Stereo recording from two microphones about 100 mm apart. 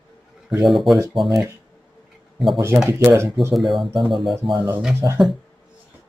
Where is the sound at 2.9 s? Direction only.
25° right (ahead or behind).